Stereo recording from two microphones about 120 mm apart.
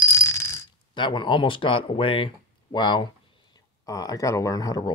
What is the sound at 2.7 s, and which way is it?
Speech, 40° left (ahead or behind).